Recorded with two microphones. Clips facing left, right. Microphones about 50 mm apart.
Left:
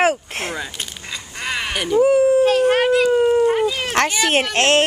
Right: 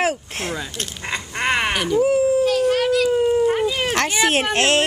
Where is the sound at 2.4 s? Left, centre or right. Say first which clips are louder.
Left 3 dB; left.